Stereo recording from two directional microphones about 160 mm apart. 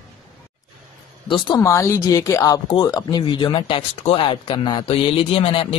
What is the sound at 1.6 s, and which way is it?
A woman's voice, 20° left (ahead or behind).